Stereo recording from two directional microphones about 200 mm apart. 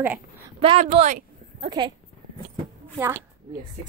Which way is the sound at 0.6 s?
35° right (ahead or behind).